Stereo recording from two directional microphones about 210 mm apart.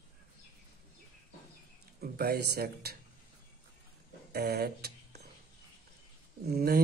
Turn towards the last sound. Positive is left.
turn(degrees=-45)  # may be behind; listen again after turning